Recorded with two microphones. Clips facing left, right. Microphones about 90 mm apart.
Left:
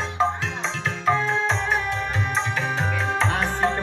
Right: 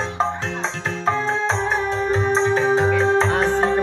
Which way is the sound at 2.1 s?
30° right (ahead or behind).